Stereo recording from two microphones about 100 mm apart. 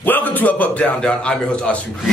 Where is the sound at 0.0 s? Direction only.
15° left (ahead or behind).